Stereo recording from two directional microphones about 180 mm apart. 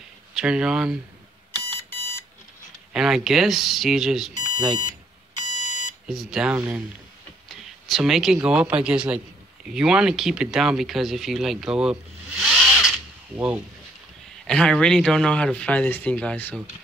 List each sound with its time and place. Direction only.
0.3 s speech: 5° right (ahead or behind)
1.5 s alarm clock: 15° left (ahead or behind)
2.9 s speech: centre (ahead or behind)
5.6 s alarm clock: 45° left (ahead or behind)
6.0 s speech: 5° right (ahead or behind)
14.4 s speech: 5° left (ahead or behind)